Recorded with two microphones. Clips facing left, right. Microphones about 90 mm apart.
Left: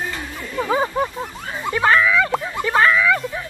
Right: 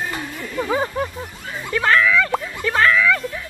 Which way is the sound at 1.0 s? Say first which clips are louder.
Left 3 dB; 25° left (ahead or behind).